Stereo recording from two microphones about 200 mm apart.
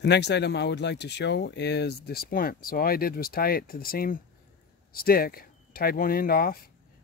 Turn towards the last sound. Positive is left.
turn(degrees=50)  # may be behind; listen again after turning